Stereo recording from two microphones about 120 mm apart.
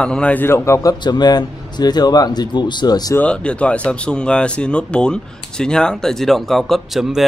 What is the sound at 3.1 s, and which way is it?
Speech, 10° left (ahead or behind).